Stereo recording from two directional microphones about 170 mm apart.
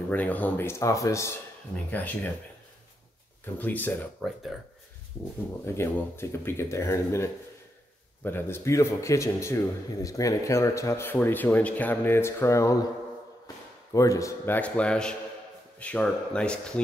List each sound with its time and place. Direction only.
0.1 s a man's voice: 10° left (ahead or behind)
3.5 s a man's voice: 10° left (ahead or behind)
5.8 s a man's voice: 15° left (ahead or behind)
13.9 s a man's voice: 20° left (ahead or behind)